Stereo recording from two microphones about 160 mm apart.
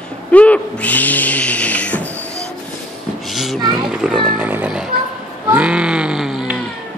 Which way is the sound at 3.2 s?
Centre (ahead or behind).